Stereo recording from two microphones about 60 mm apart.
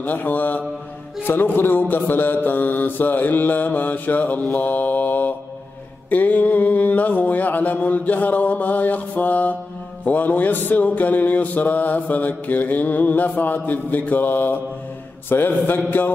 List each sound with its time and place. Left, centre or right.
0.0 s mantra: left